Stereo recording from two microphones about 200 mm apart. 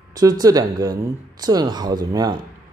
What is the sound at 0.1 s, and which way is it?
Speech, 20° right (ahead or behind).